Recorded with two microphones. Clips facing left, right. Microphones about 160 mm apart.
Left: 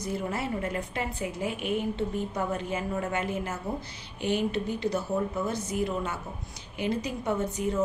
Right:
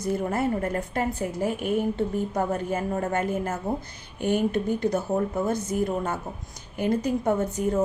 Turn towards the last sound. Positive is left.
turn(degrees=-50)  # may be behind; listen again after turning